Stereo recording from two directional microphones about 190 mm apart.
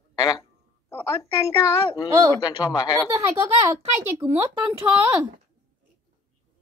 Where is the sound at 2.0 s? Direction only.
15° right (ahead or behind).